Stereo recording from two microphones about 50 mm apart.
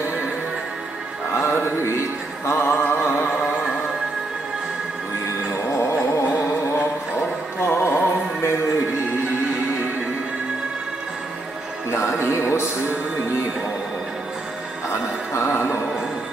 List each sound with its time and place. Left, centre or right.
1.4 s music: left
2.5 s a sound: left
3.1 s music: left
5.7 s a sound: left
7.6 s music: left
11.9 s music: left
14.9 s music: left